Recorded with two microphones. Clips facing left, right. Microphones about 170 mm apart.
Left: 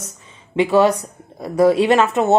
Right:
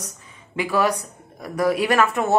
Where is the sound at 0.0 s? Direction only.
25° left (ahead or behind).